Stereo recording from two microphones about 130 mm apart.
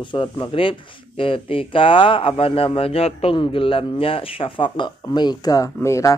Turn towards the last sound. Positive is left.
turn(degrees=25)  # may be behind; listen again after turning